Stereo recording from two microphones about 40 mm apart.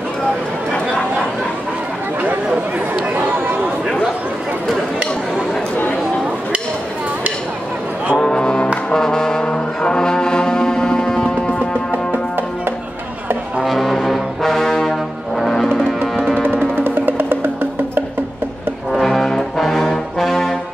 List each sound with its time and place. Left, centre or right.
2.9 s chatter: right
4.6 s chatter: centre
8.1 s music: left
8.9 s brass instrument: centre
13.7 s brass instrument: centre
16.7 s music: right
18.9 s music: centre
19.6 s brass instrument: centre